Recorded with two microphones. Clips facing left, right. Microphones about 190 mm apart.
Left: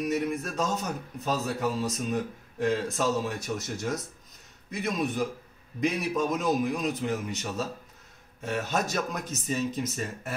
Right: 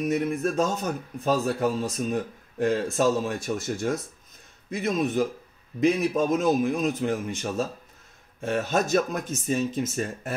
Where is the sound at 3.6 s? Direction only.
50° right (ahead or behind).